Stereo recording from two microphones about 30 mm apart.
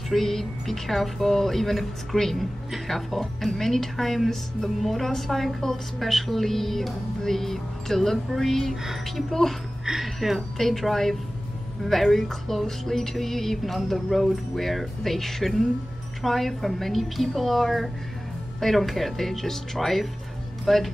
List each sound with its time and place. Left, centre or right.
0.1 s a woman's voice: centre
2.3 s music: centre
4.3 s a woman's voice: centre
9.9 s music: right
10.6 s a woman's voice: centre
11.8 s music: centre
18.6 s a woman's voice: centre